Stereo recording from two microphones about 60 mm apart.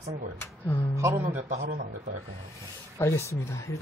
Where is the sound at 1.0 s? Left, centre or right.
Right.